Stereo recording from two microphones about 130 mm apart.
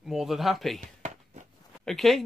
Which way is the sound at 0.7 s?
65° right (ahead or behind).